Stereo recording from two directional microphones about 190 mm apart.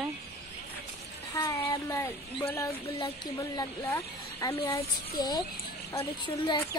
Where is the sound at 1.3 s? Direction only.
15° left (ahead or behind).